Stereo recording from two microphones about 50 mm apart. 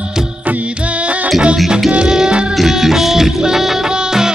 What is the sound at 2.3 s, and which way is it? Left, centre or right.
Music, centre.